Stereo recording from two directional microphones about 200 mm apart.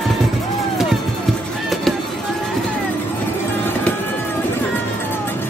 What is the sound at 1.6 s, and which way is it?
Music, centre (ahead or behind).